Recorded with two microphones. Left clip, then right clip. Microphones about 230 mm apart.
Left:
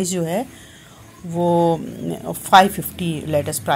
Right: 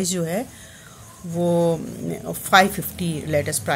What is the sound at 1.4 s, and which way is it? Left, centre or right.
A woman's voice, centre.